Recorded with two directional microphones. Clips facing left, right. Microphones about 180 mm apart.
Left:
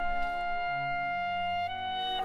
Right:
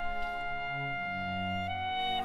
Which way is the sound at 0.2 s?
40° left (ahead or behind).